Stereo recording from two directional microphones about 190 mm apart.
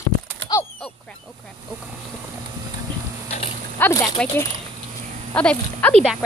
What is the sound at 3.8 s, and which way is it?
Speech, 20° left (ahead or behind).